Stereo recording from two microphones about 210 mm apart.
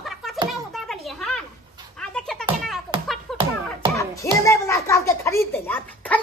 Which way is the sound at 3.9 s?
15° left (ahead or behind).